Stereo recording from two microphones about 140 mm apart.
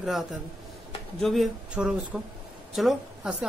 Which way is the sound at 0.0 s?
Centre (ahead or behind).